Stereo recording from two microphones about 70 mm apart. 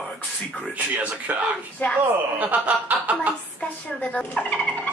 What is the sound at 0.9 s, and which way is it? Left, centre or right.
Speech, right.